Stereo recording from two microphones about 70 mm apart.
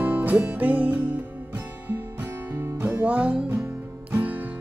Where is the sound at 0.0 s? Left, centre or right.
Right.